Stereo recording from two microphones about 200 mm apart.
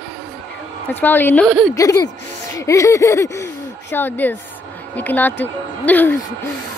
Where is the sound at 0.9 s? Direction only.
10° left (ahead or behind).